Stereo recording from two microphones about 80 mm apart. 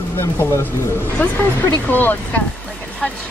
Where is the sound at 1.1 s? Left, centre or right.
Centre.